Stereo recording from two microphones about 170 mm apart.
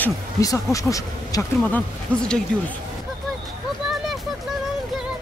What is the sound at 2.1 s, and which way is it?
Speech, 5° left (ahead or behind).